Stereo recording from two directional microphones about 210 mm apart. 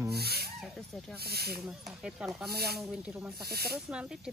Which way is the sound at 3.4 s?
50° right (ahead or behind).